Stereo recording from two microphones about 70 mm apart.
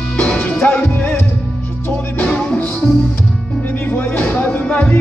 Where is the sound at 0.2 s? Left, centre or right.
Centre.